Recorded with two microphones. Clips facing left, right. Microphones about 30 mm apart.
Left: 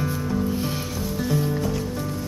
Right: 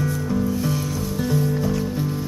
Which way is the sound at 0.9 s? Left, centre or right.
Centre.